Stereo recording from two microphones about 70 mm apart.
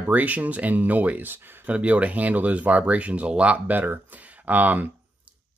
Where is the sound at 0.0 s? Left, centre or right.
Right.